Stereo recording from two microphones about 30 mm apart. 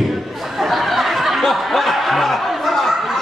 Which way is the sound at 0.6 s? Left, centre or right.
Centre.